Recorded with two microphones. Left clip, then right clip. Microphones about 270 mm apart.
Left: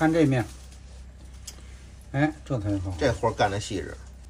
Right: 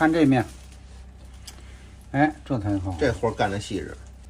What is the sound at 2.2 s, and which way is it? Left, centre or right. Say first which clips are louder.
Speech: right 4 dB; centre.